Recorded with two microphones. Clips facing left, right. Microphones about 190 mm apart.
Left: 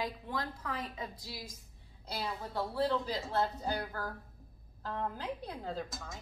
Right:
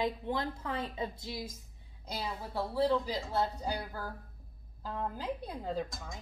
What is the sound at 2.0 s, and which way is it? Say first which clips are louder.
A woman's voice: even; 10° right (ahead or behind).